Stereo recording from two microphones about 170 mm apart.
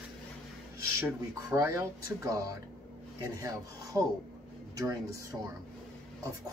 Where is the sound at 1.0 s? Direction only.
15° right (ahead or behind).